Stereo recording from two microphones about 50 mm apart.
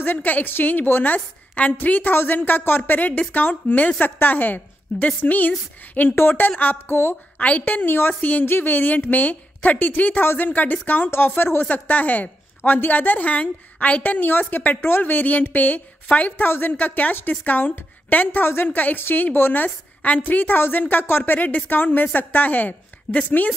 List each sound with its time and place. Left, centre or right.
0.0 s a woman's voice: left
7.3 s a woman's voice: left
8.1 s a woman's voice: left
8.5 s a woman's voice: left
11.1 s speech: left
11.6 s a woman's voice: left
14.8 s a woman's voice: left
16.4 s speech: left
16.7 s a woman's voice: left